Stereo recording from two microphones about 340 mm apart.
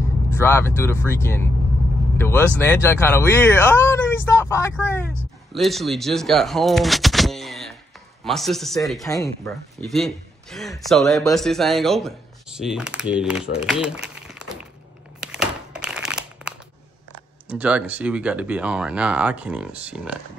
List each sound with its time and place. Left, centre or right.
0.4 s speech: centre
13.6 s a sound: centre
17.5 s speech: centre